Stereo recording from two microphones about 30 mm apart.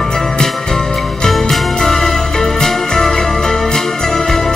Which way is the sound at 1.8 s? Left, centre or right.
Centre.